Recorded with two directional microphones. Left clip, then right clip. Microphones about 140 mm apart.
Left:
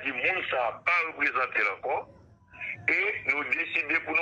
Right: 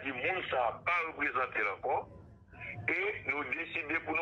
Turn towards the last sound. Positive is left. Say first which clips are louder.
# left 7 dB
turn(degrees=25)  # may be behind; listen again after turning